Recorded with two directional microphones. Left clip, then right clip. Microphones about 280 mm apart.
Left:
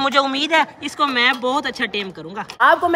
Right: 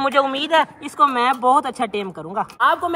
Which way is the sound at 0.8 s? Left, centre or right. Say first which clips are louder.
Right 1 dB; centre.